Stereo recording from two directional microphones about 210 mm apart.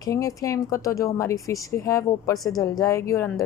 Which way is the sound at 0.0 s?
15° left (ahead or behind).